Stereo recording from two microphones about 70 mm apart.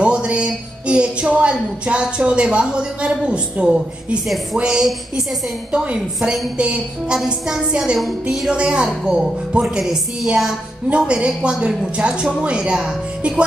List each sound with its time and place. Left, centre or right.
0.0 s a woman's voice: centre
8.5 s a woman's voice: centre